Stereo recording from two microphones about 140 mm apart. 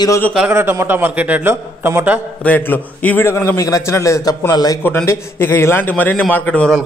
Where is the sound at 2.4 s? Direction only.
15° left (ahead or behind).